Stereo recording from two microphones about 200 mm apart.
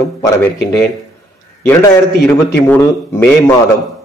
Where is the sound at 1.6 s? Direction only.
10° left (ahead or behind).